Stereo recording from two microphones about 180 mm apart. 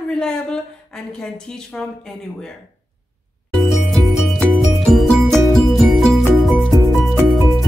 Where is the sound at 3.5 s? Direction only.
Centre (ahead or behind).